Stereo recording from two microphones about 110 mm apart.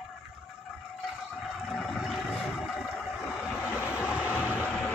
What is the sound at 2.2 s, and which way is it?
Vehicle, 10° left (ahead or behind).